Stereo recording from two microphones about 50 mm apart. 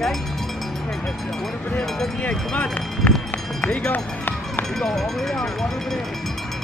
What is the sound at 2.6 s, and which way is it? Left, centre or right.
Speech, centre.